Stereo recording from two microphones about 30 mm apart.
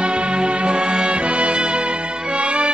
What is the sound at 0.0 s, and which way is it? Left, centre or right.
Music, right.